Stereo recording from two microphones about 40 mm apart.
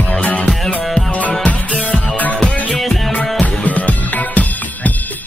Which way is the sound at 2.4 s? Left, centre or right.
Left.